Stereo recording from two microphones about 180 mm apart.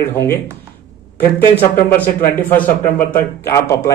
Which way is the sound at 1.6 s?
10° left (ahead or behind).